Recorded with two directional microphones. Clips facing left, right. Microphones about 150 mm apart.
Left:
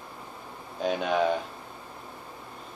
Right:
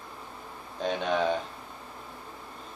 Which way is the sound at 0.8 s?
5° left (ahead or behind).